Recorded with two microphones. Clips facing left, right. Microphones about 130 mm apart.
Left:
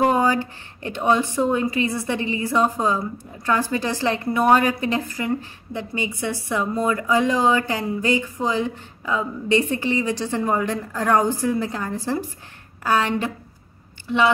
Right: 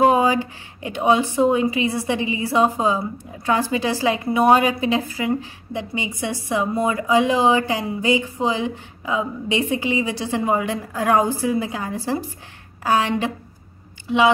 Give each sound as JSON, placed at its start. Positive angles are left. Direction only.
{"t": 0.0, "sound": "a woman's voice", "side_deg": -15}